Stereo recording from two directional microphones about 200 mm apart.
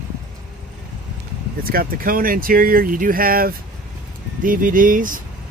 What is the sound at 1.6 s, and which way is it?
Speech, 50° right (ahead or behind).